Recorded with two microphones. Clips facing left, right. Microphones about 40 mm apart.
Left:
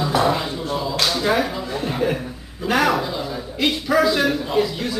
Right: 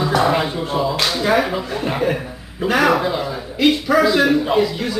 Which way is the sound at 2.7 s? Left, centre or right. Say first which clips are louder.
Right 3 dB; centre.